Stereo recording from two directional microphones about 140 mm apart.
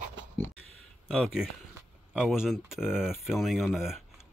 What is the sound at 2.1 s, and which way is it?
Speech, 5° right (ahead or behind).